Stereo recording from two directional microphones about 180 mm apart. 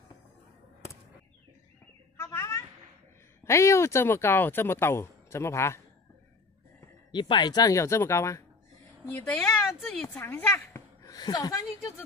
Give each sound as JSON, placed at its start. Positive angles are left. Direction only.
{"t": 2.1, "sound": "a sound", "side_deg": 15}
{"t": 3.4, "sound": "speech", "side_deg": 15}
{"t": 7.1, "sound": "speech", "side_deg": 25}
{"t": 10.0, "sound": "a woman's voice", "side_deg": 10}